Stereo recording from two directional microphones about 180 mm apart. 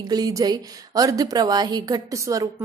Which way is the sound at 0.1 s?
20° right (ahead or behind).